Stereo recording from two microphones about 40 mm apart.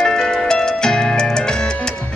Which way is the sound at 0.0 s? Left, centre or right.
Centre.